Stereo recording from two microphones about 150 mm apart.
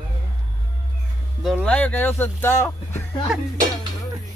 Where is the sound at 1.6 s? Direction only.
10° left (ahead or behind).